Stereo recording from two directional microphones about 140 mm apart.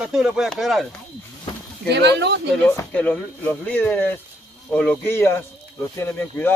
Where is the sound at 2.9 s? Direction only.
10° left (ahead or behind).